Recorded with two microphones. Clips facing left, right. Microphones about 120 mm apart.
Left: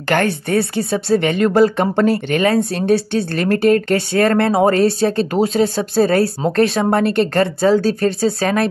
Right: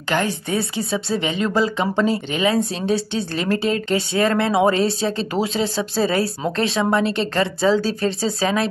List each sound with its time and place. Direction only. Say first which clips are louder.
0.1 s speech: left 5 dB; 60° left (ahead or behind)